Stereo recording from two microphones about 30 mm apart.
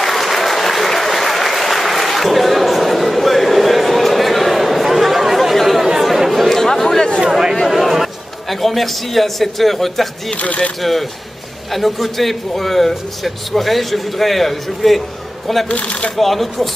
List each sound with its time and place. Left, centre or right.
0.0 s applause: centre
5.9 s chatter: centre
6.5 s chatter: centre
7.2 s speech: centre
7.6 s a man's voice: centre
10.3 s speech: left
10.8 s a man's voice: centre
15.7 s speech: left
16.2 s a man's voice: centre